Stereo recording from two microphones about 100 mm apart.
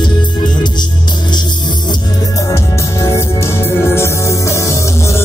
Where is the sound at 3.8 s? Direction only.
25° left (ahead or behind).